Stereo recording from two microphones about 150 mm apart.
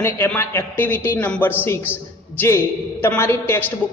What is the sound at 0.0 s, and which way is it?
A man's voice, 15° left (ahead or behind).